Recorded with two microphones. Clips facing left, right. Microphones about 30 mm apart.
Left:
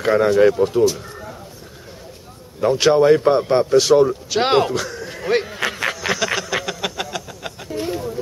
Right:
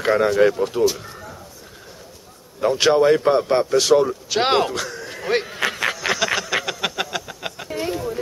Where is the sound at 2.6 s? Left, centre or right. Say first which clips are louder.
Left 2 dB; centre.